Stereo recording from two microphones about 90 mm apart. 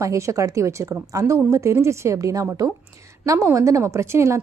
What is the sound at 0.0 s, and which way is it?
A woman's voice, 35° right (ahead or behind).